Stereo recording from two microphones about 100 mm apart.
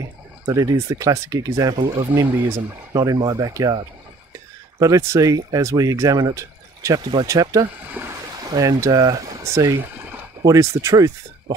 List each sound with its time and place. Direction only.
0.0 s speech: 35° right (ahead or behind)
4.7 s speech: 35° right (ahead or behind)
8.0 s speech: 20° right (ahead or behind)
8.5 s speech: 35° right (ahead or behind)